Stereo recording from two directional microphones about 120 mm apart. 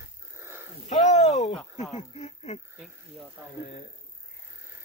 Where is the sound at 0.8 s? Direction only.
65° left (ahead or behind).